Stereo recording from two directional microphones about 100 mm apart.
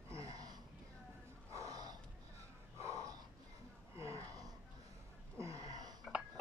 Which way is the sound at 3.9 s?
30° right (ahead or behind).